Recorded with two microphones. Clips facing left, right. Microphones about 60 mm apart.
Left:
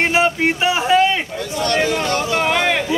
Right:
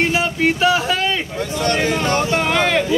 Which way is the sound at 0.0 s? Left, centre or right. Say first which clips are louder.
Left 1 dB; left.